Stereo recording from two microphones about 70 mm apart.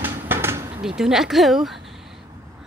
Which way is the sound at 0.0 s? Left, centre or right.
Right.